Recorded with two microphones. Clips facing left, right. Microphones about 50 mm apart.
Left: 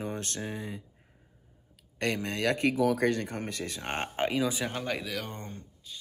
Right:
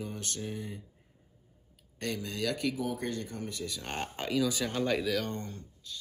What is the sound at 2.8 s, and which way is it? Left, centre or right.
Speech, left.